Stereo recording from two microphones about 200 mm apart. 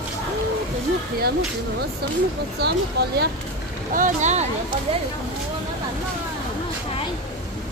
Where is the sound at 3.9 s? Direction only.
40° right (ahead or behind).